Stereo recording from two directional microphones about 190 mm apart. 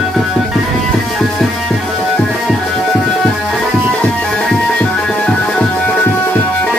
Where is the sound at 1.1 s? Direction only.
Centre (ahead or behind).